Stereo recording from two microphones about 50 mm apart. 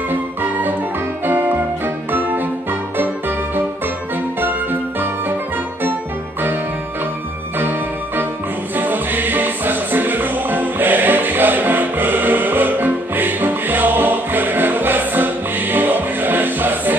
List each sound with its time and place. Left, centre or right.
0.1 s organ: right
1.2 s music: right
8.7 s music: right